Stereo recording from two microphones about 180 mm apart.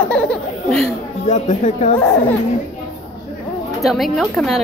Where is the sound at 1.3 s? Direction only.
40° left (ahead or behind).